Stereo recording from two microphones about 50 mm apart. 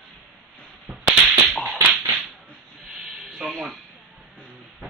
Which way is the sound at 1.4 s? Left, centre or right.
Centre.